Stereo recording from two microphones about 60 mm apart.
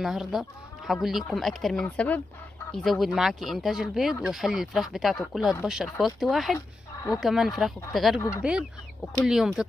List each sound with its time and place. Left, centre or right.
0.0 s speech: centre
2.0 s speech: left
2.7 s speech: centre
8.4 s speech: centre